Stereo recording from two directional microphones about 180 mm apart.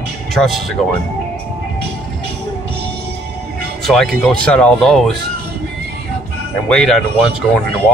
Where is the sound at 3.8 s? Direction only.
Centre (ahead or behind).